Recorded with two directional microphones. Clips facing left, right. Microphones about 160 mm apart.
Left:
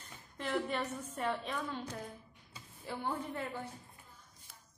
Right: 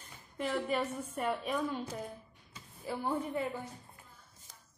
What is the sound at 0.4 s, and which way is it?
A child's voice, 5° right (ahead or behind).